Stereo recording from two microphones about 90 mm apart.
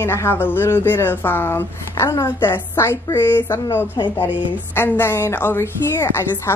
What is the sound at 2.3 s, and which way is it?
A woman's voice, 25° left (ahead or behind).